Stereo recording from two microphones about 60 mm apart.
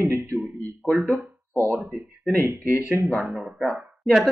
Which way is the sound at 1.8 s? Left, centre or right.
Centre.